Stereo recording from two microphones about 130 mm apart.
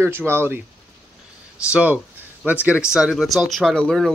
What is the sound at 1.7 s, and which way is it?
Speech, 10° right (ahead or behind).